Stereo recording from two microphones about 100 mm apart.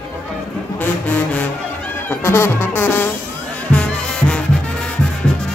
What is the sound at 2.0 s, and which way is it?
Music, 25° left (ahead or behind).